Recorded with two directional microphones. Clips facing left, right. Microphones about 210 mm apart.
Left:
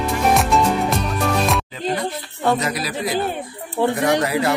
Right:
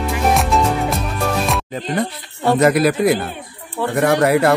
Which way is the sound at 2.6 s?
55° right (ahead or behind).